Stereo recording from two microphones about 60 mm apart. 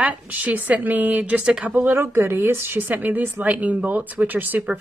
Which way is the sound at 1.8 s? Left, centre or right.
Right.